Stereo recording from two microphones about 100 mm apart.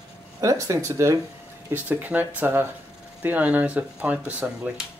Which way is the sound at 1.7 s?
20° right (ahead or behind).